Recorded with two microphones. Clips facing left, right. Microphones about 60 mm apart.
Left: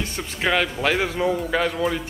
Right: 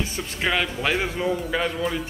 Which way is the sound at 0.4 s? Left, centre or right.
Left.